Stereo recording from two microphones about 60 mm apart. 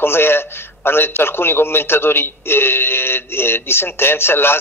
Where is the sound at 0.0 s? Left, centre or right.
Left.